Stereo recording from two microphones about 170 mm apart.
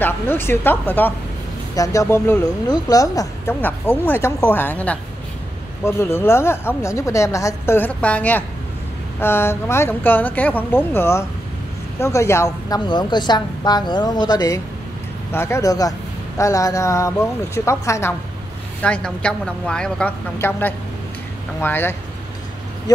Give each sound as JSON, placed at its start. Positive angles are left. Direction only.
{"t": 0.0, "sound": "a woman's voice", "side_deg": 10}
{"t": 18.8, "sound": "a woman's voice", "side_deg": 5}